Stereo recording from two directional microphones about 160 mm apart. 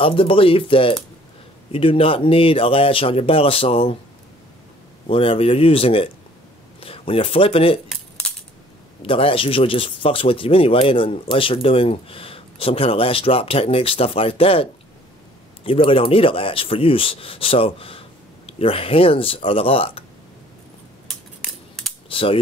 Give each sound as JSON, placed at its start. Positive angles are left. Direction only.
{"t": 0.0, "sound": "speech", "side_deg": 35}
{"t": 5.0, "sound": "speech", "side_deg": 35}
{"t": 9.0, "sound": "speech", "side_deg": 35}
{"t": 22.1, "sound": "mechanisms", "side_deg": 35}